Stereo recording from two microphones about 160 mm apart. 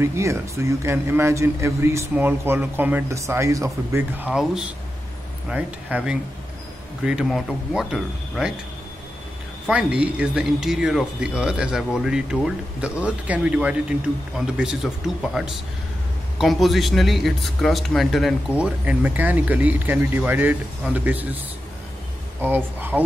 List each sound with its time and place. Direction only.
0.0 s a man's voice: 15° right (ahead or behind)
4.3 s a man's voice: 5° right (ahead or behind)
9.9 s a man's voice: 5° right (ahead or behind)
22.4 s a man's voice: 10° right (ahead or behind)